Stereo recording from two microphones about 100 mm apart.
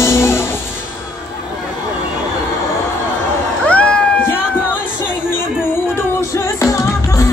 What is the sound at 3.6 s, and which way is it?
Cat, 10° left (ahead or behind).